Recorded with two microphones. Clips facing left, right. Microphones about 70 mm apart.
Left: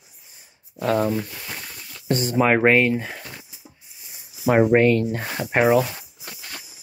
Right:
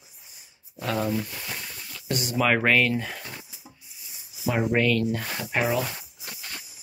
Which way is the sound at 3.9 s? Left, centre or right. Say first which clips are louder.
Left 2 dB; left.